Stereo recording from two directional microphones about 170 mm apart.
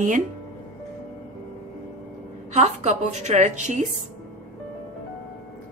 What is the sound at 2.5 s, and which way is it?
Speech, 40° right (ahead or behind).